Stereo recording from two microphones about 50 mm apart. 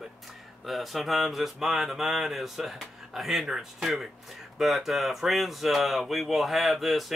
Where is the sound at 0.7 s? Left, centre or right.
Centre.